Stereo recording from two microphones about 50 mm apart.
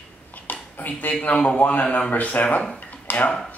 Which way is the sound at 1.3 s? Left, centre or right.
Left.